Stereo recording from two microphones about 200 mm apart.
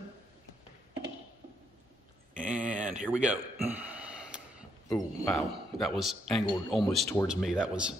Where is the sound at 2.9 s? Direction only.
5° right (ahead or behind).